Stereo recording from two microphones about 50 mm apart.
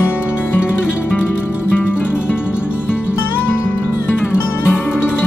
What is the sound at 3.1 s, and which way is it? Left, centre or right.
Music, left.